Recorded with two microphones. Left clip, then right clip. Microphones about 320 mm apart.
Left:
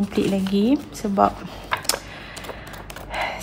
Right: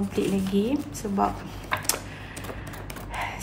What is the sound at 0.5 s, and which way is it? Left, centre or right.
Speech, left.